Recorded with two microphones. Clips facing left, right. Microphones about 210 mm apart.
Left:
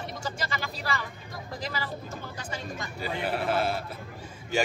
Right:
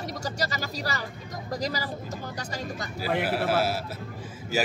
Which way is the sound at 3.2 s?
5° right (ahead or behind).